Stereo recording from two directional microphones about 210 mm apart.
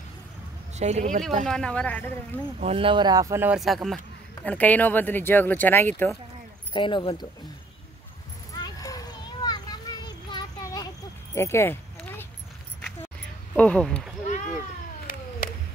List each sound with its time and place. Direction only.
0.7 s speech: 30° right (ahead or behind)
1.4 s speech: 5° left (ahead or behind)
2.6 s speech: 25° right (ahead or behind); by 6.1 s 10° left (ahead or behind)
6.7 s speech: 25° left (ahead or behind)
8.5 s children playing: 20° left (ahead or behind)
11.3 s a sound: 10° left (ahead or behind)
13.6 s speech: 5° left (ahead or behind)
14.2 s a sound: 35° left (ahead or behind)